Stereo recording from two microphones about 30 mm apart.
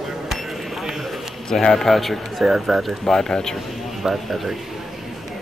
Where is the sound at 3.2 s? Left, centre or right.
Left.